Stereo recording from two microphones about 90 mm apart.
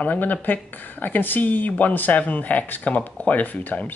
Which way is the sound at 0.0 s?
20° left (ahead or behind).